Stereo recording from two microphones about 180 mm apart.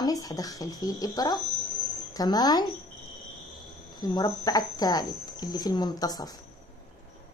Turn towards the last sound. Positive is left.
turn(degrees=20)  # may be behind; listen again after turning